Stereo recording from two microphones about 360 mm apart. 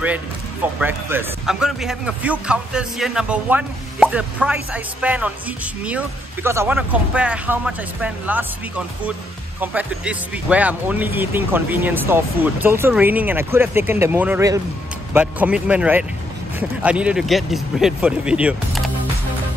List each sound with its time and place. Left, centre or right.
0.7 s speech: centre